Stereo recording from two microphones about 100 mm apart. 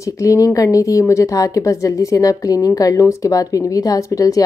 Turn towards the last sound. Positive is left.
turn(degrees=35)  # may be behind; listen again after turning